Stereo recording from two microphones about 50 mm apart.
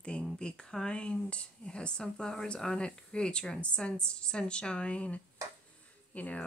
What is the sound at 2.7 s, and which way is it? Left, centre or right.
A woman's voice, centre.